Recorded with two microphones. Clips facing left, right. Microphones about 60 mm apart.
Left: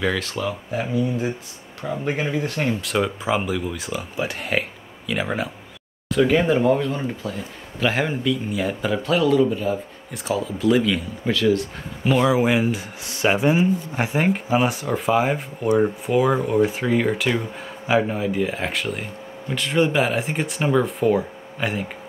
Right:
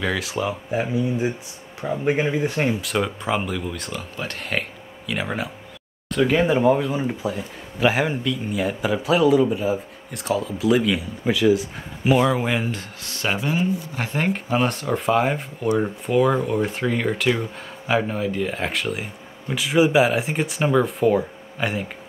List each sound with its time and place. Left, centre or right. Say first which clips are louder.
0.0 s speech: even; centre
2.8 s speech: left 1 dB; centre
12.3 s speech: left 4 dB; centre
13.0 s speech: left 6 dB; centre